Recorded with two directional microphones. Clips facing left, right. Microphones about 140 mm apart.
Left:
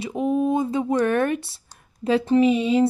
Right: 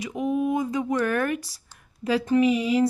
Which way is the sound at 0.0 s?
30° left (ahead or behind).